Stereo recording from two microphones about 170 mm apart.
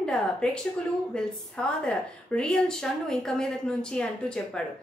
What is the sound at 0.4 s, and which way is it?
A woman's voice, 5° left (ahead or behind).